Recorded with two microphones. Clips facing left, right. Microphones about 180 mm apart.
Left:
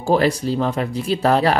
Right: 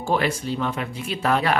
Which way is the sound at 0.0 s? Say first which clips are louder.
Left 6 dB; 40° left (ahead or behind).